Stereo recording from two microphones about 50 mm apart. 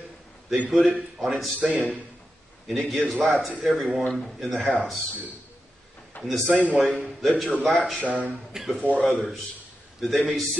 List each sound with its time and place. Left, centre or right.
0.7 s speech: centre
6.2 s speech: centre